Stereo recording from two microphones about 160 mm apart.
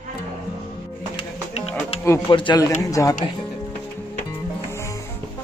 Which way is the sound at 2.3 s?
30° left (ahead or behind).